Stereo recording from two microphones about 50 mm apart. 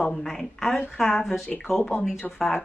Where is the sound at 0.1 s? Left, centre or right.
Centre.